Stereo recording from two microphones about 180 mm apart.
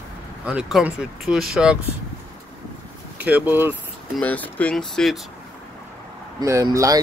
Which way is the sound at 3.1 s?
10° right (ahead or behind).